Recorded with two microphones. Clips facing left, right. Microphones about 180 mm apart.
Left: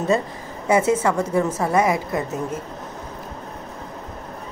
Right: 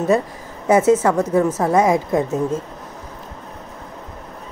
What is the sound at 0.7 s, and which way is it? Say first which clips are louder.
A woman's voice: right 4 dB; 15° left (ahead or behind).